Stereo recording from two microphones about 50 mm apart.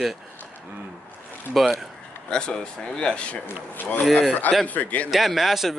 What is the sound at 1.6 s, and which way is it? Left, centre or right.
Speech, centre.